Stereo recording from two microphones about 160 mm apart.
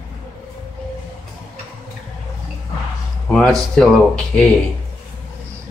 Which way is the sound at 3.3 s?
Centre (ahead or behind).